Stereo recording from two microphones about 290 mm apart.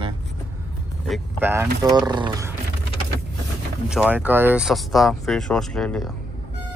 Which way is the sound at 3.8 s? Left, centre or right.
Centre.